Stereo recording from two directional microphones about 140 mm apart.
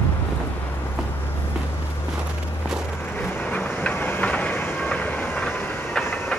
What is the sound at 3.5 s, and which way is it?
Train, 10° left (ahead or behind).